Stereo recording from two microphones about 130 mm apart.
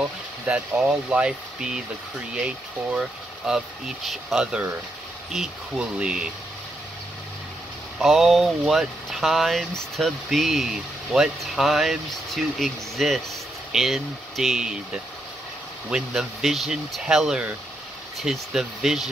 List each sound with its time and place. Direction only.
0.5 s speech: 10° right (ahead or behind)
8.0 s speech: centre (ahead or behind)
15.9 s speech: 5° right (ahead or behind)